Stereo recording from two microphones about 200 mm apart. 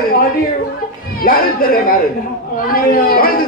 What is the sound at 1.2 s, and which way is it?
Speech, 45° left (ahead or behind).